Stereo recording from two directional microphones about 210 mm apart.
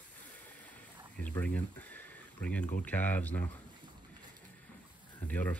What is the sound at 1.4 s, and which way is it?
Speech, 5° left (ahead or behind).